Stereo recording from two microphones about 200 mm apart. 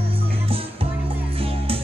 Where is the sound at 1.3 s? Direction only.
30° right (ahead or behind).